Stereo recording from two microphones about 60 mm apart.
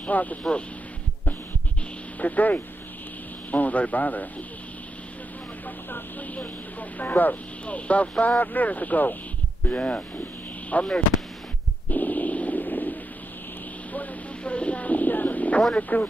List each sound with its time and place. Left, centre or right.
0.0 s speech: left
2.1 s speech: left
5.9 s speech: left
11.9 s a sound: left
15.9 s speech: left